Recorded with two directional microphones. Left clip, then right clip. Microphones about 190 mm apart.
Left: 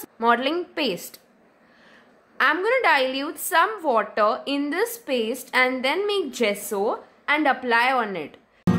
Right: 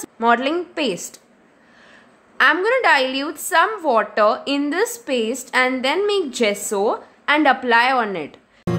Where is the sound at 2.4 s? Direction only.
Centre (ahead or behind).